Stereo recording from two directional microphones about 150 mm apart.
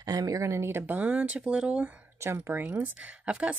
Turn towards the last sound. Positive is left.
turn(degrees=-10)  # may be behind; listen again after turning